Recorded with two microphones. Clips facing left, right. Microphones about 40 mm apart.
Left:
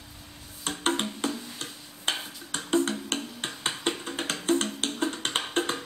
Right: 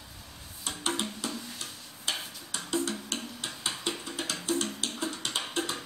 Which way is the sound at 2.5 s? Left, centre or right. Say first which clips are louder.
Left 6 dB; left.